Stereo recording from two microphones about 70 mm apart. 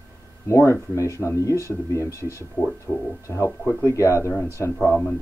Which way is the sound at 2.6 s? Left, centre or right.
Left.